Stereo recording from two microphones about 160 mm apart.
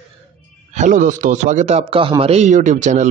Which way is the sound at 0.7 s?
50° right (ahead or behind).